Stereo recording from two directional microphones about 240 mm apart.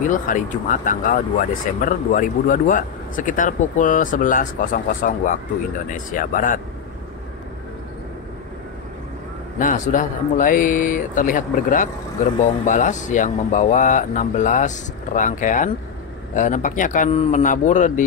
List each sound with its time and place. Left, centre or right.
0.0 s speech: left
9.6 s speech: left